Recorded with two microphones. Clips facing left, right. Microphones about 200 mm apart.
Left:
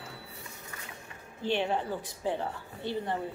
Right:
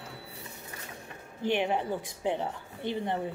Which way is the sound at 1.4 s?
15° right (ahead or behind).